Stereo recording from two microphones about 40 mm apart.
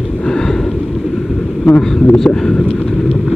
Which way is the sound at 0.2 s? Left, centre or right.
Centre.